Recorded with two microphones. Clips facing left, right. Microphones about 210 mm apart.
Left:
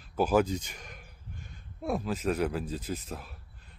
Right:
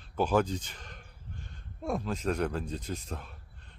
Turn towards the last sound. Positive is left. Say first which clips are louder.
# left 2 dB
turn(degrees=5)  # may be behind; listen again after turning